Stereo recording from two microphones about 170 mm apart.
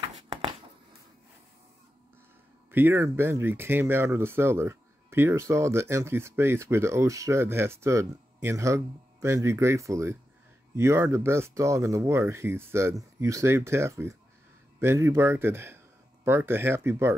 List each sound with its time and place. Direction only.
2.7 s speech: 15° right (ahead or behind)